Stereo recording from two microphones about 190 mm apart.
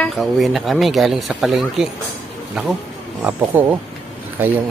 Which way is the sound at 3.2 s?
5° right (ahead or behind).